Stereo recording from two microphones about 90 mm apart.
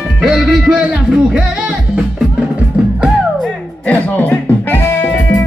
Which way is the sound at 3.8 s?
15° left (ahead or behind).